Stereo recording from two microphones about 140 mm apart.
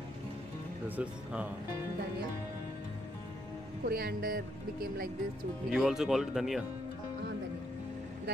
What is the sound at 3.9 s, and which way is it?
Speech, 90° right.